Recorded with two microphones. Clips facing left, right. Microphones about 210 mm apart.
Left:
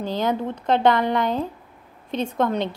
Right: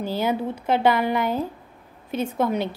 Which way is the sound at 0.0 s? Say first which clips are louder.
Even; 10° right (ahead or behind).